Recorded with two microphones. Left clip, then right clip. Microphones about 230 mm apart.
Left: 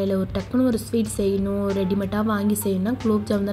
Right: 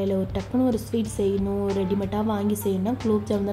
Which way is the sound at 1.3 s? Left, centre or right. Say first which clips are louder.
Left 1 dB; centre.